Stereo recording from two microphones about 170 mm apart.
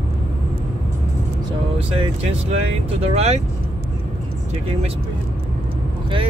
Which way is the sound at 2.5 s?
40° right (ahead or behind).